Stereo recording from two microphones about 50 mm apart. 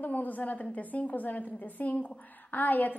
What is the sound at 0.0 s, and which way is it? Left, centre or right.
A woman's voice, left.